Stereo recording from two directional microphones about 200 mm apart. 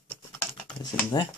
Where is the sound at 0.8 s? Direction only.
20° left (ahead or behind).